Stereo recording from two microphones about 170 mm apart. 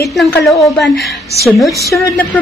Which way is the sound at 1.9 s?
20° left (ahead or behind).